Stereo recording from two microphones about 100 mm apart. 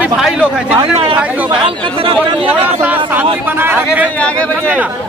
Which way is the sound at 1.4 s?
60° right (ahead or behind).